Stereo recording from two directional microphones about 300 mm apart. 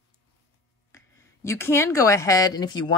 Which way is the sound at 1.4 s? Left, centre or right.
Centre.